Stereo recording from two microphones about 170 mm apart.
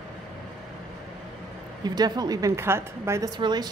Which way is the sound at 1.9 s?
25° right (ahead or behind).